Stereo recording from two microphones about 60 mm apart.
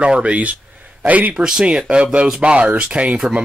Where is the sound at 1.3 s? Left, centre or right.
Centre.